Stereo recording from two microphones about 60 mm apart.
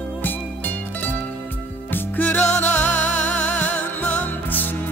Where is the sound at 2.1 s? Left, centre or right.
Left.